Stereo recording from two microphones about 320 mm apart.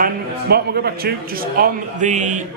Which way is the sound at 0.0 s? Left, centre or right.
Right.